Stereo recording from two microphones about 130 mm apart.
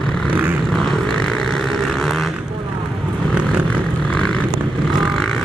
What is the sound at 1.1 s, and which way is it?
Vehicle, 5° left (ahead or behind).